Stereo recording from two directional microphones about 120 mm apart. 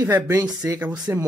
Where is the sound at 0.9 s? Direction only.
35° right (ahead or behind).